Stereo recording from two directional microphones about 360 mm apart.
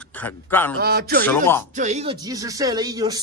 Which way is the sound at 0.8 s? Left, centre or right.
Right.